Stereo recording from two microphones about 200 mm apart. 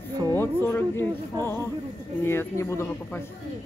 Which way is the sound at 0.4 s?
10° left (ahead or behind).